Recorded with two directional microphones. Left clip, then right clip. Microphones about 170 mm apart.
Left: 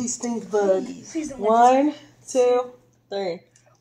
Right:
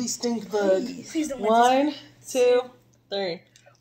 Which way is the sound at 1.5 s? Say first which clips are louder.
Left 3 dB; 10° left (ahead or behind).